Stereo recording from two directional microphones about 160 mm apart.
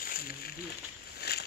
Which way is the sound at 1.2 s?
90° left.